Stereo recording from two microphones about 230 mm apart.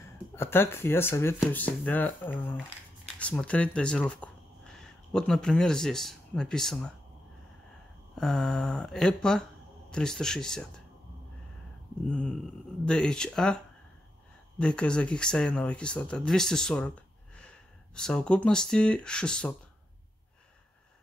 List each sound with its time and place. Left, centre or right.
0.4 s speech: centre
8.2 s speech: centre
12.1 s speech: centre
14.6 s speech: centre